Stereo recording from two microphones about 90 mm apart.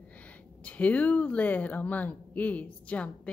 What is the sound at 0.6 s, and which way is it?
A woman's voice, 15° left (ahead or behind).